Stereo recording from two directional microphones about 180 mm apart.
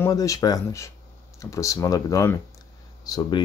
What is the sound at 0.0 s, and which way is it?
Speech, 20° left (ahead or behind).